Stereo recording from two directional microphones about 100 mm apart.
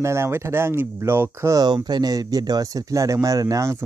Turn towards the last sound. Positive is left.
turn(degrees=-30)  # may be behind; listen again after turning